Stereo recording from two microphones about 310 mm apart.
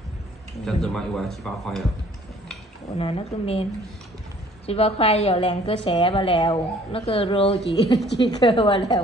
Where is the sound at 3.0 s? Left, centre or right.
Centre.